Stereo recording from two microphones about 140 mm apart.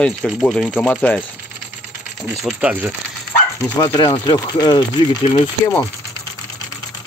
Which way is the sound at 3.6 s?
20° left (ahead or behind).